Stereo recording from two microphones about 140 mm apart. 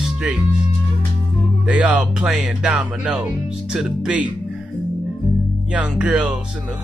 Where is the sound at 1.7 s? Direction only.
5° right (ahead or behind).